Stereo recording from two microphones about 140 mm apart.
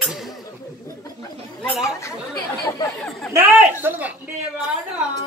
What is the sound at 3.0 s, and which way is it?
Speech, 5° left (ahead or behind).